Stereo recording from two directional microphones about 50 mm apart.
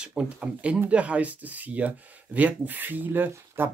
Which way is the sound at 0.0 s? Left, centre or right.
Right.